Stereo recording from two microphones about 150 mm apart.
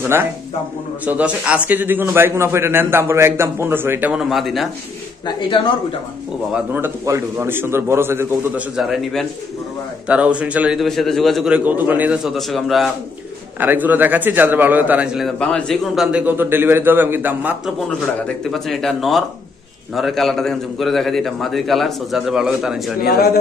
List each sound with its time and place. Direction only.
1.0 s a man's voice: 10° right (ahead or behind)
5.2 s a man's voice: 35° left (ahead or behind)
6.5 s a man's voice: 15° right (ahead or behind)
8.7 s a man's voice: centre (ahead or behind)
13.6 s a man's voice: 10° right (ahead or behind)
17.6 s a man's voice: centre (ahead or behind)
23.0 s a man's voice: 80° left